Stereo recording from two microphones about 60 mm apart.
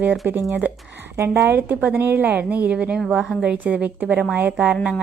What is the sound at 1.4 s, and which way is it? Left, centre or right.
A woman's voice, right.